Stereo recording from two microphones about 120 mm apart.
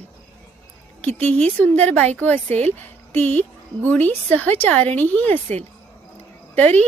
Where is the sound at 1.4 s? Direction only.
10° left (ahead or behind).